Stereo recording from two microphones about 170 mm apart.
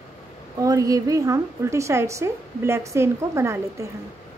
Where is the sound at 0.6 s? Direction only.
20° right (ahead or behind).